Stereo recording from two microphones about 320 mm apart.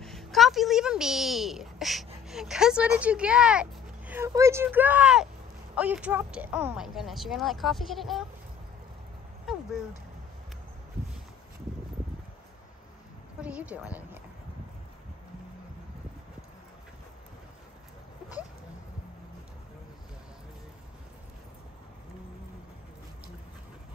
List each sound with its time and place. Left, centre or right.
0.0 s a woman's voice: centre
13.4 s speech: centre